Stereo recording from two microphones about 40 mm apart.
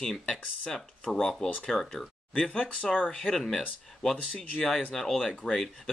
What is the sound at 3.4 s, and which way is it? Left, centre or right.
Speech, centre.